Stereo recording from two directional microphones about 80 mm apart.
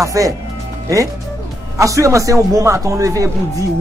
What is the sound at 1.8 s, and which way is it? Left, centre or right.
A man's voice, right.